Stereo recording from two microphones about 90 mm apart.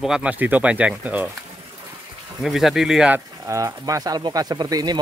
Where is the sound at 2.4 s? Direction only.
Centre (ahead or behind).